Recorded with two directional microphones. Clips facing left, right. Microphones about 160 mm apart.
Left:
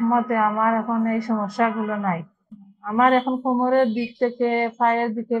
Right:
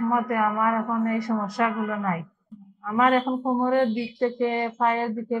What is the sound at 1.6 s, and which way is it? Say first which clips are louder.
Speech: left 4 dB; 40° left (ahead or behind).